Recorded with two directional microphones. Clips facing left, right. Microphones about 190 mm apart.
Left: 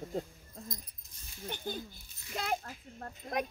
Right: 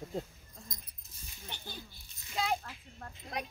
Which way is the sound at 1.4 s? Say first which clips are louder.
Left 8 dB; 50° left (ahead or behind).